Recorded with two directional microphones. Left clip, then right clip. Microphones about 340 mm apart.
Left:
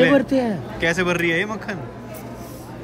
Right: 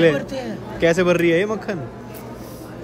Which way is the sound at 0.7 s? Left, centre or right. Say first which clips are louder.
Right 4 dB; centre.